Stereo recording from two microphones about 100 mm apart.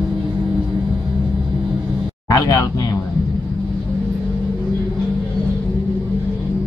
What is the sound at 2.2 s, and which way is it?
Speech, 35° left (ahead or behind).